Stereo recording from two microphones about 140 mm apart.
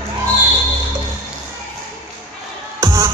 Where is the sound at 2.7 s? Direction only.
25° right (ahead or behind).